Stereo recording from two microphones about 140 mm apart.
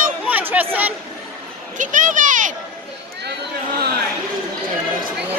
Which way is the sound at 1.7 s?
65° right (ahead or behind).